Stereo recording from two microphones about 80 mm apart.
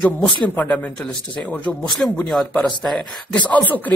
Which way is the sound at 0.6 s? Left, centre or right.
Centre.